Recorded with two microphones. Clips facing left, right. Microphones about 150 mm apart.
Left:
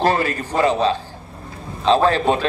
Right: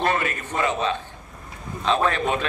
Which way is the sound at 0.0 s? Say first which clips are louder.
Left 5 dB; 30° left (ahead or behind).